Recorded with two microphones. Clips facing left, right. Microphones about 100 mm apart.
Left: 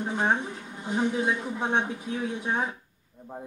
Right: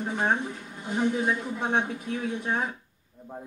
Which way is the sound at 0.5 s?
15° left (ahead or behind).